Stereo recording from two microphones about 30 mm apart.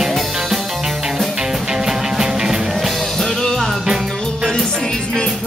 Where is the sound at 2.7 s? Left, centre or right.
Centre.